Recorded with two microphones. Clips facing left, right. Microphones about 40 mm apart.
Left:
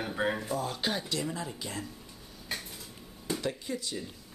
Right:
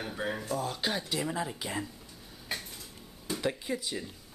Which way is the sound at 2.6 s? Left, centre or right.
Centre.